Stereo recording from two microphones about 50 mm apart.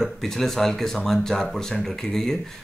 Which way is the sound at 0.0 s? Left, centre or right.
Centre.